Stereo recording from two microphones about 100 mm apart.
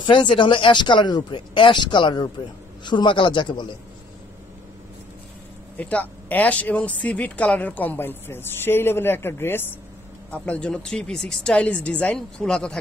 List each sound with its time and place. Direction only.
0.0 s speech: 55° left (ahead or behind)
5.8 s speech: 15° left (ahead or behind)